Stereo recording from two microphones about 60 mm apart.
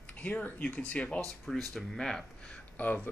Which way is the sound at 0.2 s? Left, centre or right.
Left.